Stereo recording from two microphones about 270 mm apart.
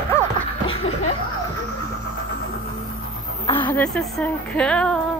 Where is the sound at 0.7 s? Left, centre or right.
Left.